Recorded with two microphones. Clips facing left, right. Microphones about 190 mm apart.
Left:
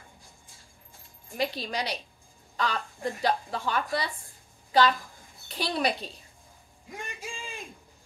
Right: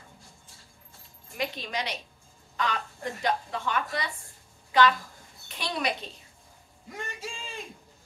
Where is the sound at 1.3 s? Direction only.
35° left (ahead or behind).